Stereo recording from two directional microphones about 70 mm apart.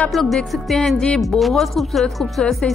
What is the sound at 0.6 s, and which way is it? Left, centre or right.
Music, centre.